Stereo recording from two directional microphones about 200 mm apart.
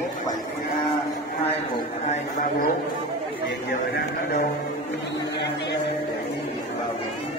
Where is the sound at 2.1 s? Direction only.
40° left (ahead or behind).